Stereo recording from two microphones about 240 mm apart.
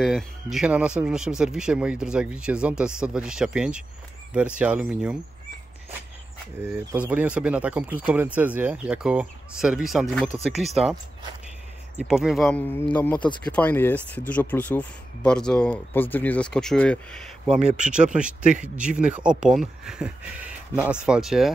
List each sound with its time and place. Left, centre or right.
0.0 s speech: centre
6.6 s speech: centre
12.0 s speech: centre
17.6 s speech: right
17.8 s speech: centre